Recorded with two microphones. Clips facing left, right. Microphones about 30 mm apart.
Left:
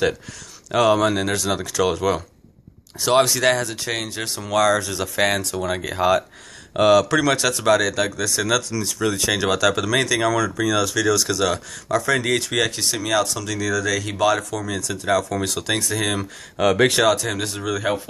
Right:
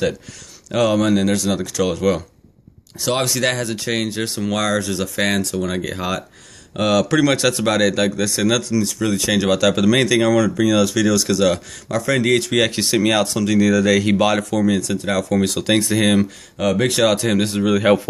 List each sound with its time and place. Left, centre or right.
0.7 s speech: centre
7.3 s speech: centre
8.7 s speech: centre
12.7 s speech: right
13.4 s speech: right
15.6 s speech: right
16.6 s speech: left
17.1 s speech: right